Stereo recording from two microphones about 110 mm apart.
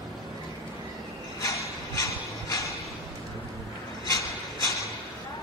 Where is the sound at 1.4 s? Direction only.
30° left (ahead or behind).